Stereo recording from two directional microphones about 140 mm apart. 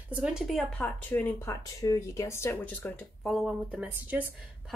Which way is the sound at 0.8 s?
15° left (ahead or behind).